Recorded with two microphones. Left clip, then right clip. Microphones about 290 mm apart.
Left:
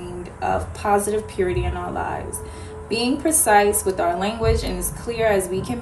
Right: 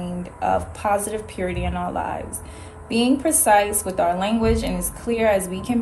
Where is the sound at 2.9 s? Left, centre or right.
Right.